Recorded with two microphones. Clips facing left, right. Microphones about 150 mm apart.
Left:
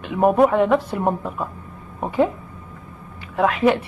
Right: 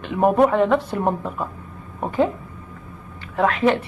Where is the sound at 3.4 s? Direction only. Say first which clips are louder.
Left 1 dB; 5° left (ahead or behind).